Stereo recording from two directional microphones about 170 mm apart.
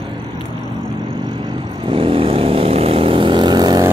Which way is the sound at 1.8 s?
30° right (ahead or behind).